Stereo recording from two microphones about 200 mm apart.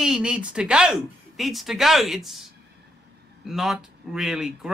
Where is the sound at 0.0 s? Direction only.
5° right (ahead or behind).